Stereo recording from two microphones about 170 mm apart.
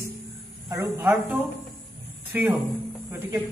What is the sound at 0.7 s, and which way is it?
Speech, 15° right (ahead or behind).